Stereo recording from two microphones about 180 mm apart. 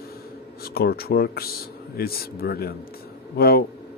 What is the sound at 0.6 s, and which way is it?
A man's voice, 60° left (ahead or behind).